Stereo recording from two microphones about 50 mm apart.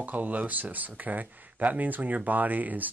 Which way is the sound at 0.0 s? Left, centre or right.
Right.